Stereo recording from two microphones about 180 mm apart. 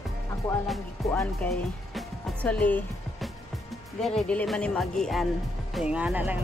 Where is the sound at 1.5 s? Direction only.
5° left (ahead or behind).